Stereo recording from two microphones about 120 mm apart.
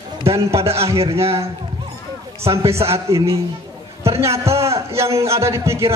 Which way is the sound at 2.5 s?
25° right (ahead or behind).